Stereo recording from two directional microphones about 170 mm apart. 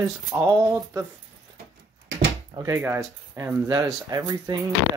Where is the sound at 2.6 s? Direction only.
15° right (ahead or behind).